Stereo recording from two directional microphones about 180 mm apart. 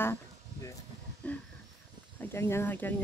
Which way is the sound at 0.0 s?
15° left (ahead or behind).